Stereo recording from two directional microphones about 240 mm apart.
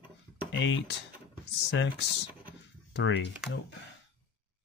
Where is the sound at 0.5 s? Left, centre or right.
Left.